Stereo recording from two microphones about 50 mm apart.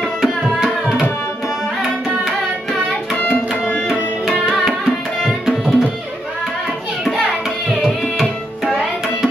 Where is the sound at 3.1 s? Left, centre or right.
Left.